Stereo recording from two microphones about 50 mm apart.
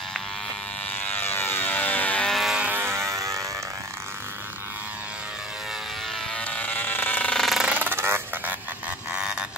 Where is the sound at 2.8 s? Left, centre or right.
Right.